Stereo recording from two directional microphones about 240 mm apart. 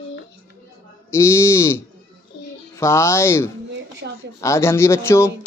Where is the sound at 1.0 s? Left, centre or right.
Centre.